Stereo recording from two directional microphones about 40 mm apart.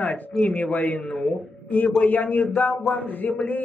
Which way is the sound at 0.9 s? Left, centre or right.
Centre.